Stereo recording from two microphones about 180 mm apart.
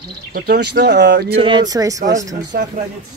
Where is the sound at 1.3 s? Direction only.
25° right (ahead or behind).